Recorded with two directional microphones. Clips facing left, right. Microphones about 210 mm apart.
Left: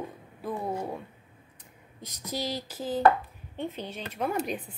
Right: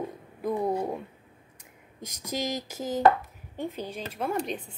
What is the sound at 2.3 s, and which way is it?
Speech, 15° right (ahead or behind).